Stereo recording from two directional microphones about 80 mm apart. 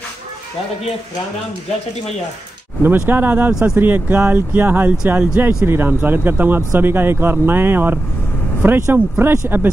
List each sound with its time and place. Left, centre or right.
3.1 s speech: right